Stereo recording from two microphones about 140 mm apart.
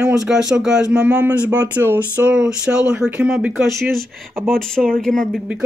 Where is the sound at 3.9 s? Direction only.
Centre (ahead or behind).